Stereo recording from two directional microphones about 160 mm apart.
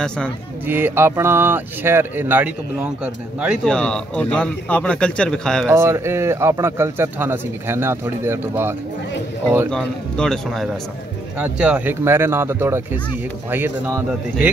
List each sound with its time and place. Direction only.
0.7 s speech: 15° right (ahead or behind)
3.6 s a man's voice: 5° left (ahead or behind)
5.7 s speech: 15° right (ahead or behind)
9.7 s a man's voice: 5° left (ahead or behind); by 14.5 s 15° right (ahead or behind)